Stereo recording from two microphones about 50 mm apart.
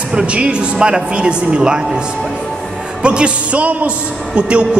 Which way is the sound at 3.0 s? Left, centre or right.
Right.